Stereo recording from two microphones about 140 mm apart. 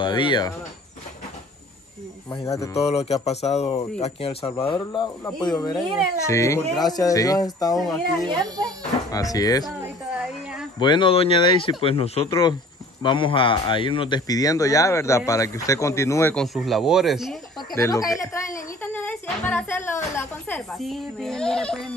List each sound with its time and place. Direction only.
0.0 s speech: 35° left (ahead or behind)
2.4 s a man's voice: 20° left (ahead or behind)
2.7 s speech: 50° left (ahead or behind)
4.6 s a man's voice: 35° left (ahead or behind)
7.7 s speech: centre (ahead or behind)
8.3 s speech: 30° right (ahead or behind)
9.1 s a man's voice: 25° left (ahead or behind)
9.8 s a sound: 5° right (ahead or behind)
10.8 s a man's voice: 35° left (ahead or behind)
16.3 s speech: centre (ahead or behind)
17.6 s speech: 25° left (ahead or behind)
20.7 s speech: centre (ahead or behind)